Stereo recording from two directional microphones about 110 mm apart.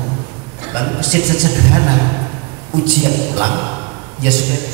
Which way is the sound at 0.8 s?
10° right (ahead or behind).